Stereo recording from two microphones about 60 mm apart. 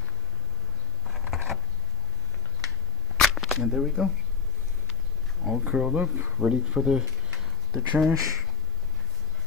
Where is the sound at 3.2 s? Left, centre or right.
Centre.